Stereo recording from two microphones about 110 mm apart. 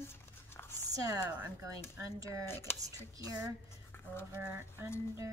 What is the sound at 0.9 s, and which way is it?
Speech, 30° right (ahead or behind).